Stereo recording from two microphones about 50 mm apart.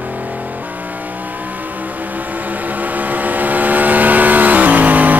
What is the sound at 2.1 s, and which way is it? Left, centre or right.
Vehicle, right.